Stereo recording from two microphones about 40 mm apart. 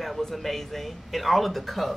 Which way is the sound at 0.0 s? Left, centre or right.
Centre.